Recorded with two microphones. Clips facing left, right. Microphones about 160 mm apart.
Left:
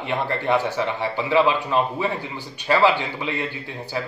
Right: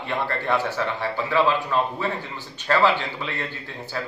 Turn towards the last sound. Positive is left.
turn(degrees=15)  # may be behind; listen again after turning